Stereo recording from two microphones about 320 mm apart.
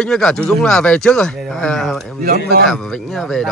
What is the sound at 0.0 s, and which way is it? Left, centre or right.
Speech, centre.